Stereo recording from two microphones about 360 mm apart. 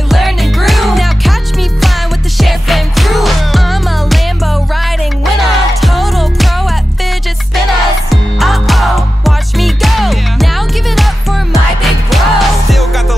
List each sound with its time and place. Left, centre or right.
0.1 s music: centre
2.3 s music: centre
5.8 s music: centre
8.1 s music: centre
11.5 s music: centre